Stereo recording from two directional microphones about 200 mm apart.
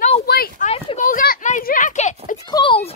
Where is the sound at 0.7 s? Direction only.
35° left (ahead or behind).